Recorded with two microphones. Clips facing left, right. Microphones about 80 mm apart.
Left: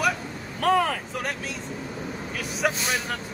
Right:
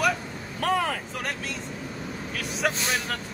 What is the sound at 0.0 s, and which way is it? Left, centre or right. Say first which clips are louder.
Vehicle: even; centre.